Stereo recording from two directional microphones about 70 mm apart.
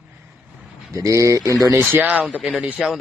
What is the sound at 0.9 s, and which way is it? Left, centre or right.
Speech, right.